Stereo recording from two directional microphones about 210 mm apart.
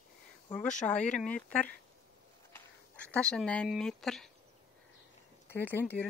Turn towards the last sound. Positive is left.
turn(degrees=10)  # may be behind; listen again after turning